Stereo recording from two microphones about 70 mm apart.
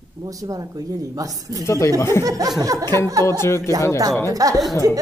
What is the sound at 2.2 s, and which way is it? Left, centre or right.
Speech, right.